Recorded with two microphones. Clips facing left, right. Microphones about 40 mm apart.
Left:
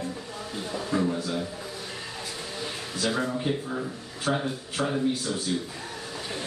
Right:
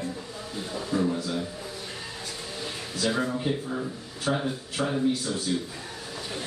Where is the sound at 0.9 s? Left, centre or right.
Left.